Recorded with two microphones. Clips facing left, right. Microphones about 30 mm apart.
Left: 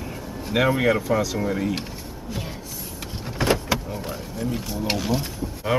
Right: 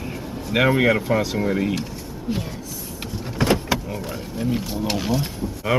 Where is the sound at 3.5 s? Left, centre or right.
Centre.